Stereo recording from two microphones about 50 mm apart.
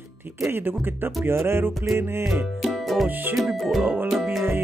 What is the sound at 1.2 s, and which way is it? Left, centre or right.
Music, right.